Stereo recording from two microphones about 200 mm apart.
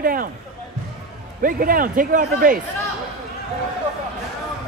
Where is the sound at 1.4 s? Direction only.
45° right (ahead or behind).